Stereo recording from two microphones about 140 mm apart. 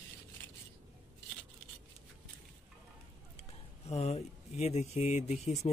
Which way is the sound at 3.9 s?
50° left (ahead or behind).